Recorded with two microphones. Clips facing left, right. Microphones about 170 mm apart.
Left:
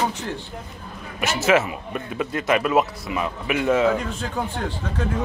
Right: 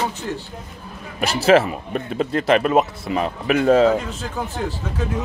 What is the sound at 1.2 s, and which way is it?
Speech, 35° right (ahead or behind).